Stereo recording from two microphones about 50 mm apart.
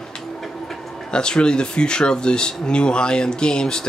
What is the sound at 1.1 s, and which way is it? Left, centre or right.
Speech, centre.